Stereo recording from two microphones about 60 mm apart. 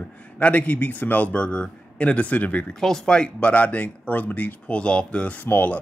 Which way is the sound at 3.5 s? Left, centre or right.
Left.